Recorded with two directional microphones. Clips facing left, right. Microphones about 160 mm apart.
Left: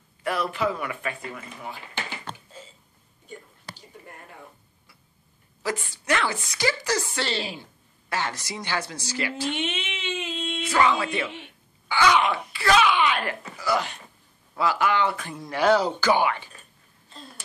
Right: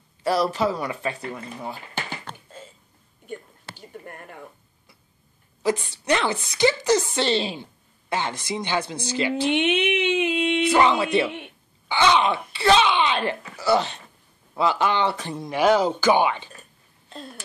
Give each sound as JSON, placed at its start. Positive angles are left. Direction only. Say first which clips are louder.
{"t": 0.2, "sound": "speech", "louder": "right 4 dB", "side_deg": -35}
{"t": 5.6, "sound": "speech", "louder": "right 6 dB", "side_deg": -20}
{"t": 9.4, "sound": "a sound", "louder": "right 8 dB", "side_deg": -60}
{"t": 10.7, "sound": "speech", "louder": "right 1 dB", "side_deg": -25}
{"t": 15.5, "sound": "speech", "louder": "right 2 dB", "side_deg": -15}